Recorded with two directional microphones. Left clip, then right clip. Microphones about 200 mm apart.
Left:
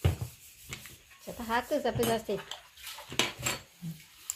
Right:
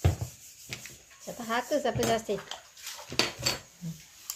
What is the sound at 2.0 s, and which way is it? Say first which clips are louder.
Cutlery: right 2 dB; 10° left (ahead or behind).